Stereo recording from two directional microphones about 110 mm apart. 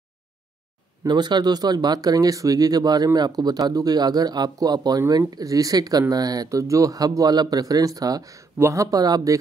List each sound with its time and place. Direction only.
1.0 s speech: 40° right (ahead or behind)